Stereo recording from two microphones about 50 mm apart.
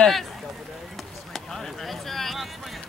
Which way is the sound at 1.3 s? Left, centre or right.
Centre.